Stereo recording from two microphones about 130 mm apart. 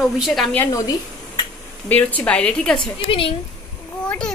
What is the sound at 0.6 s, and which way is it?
Speech, 25° left (ahead or behind).